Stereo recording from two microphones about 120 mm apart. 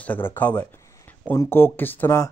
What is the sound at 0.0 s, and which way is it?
Speech, 15° left (ahead or behind).